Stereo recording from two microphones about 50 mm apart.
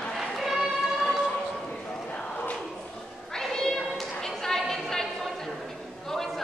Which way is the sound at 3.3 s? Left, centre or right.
Centre.